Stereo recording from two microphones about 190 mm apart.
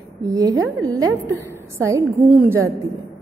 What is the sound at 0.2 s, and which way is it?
A woman's voice, 20° right (ahead or behind).